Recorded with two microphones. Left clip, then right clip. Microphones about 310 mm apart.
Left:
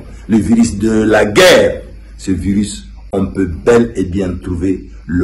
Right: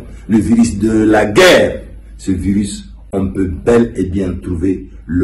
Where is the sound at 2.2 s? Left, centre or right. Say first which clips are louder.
Even; centre.